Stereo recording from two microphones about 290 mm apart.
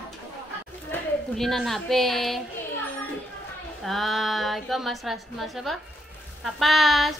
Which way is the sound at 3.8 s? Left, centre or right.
Centre.